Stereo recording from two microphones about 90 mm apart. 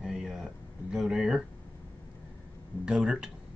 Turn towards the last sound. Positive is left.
turn(degrees=-5)  # may be behind; listen again after turning